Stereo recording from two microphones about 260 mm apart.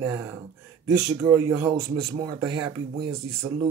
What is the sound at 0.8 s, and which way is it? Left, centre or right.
Speech, centre.